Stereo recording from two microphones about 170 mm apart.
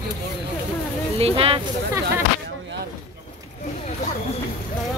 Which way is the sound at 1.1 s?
35° right (ahead or behind).